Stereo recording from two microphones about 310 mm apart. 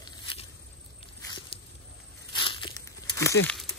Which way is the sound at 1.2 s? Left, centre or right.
Centre.